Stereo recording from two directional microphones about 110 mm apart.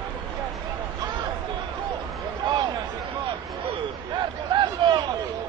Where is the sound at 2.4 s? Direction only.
40° right (ahead or behind).